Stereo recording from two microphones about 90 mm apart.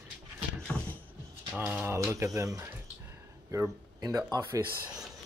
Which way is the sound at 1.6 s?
25° right (ahead or behind).